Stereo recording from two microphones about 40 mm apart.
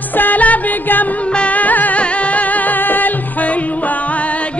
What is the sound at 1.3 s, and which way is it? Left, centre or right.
Music, left.